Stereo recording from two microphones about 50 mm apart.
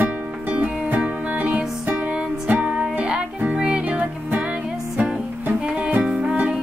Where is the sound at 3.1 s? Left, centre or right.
Centre.